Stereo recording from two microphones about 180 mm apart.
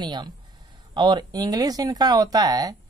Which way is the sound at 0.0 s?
25° right (ahead or behind).